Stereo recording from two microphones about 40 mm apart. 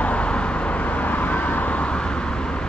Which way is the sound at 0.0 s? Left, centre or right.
Left.